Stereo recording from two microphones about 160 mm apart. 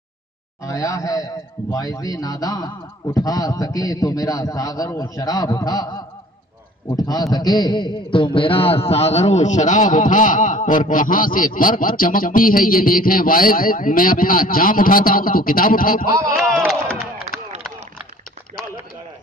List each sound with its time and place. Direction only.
0.6 s a man's voice: 20° left (ahead or behind)
6.9 s a man's voice: 25° left (ahead or behind); by 16.1 s 65° left (ahead or behind)
16.3 s speech: centre (ahead or behind)